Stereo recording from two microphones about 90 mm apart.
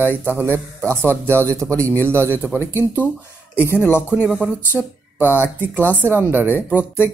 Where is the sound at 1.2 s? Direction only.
30° right (ahead or behind).